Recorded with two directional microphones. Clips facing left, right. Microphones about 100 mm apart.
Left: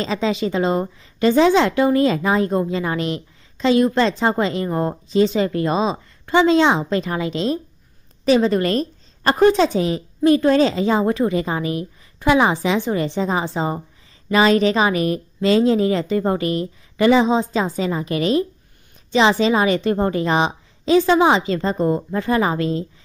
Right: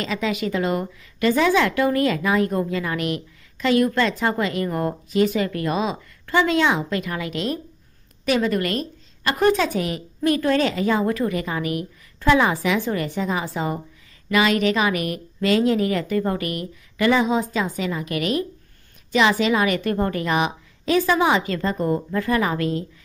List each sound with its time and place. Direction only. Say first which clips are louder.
0.0 s a woman's voice: left 4 dB; 30° left (ahead or behind)